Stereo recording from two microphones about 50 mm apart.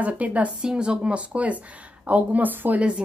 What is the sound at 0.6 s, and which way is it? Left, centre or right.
A woman's voice, centre.